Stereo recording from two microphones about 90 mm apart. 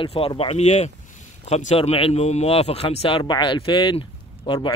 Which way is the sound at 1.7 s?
90° left.